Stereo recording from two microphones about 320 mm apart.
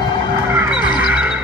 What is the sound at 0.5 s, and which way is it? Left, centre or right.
Music, centre.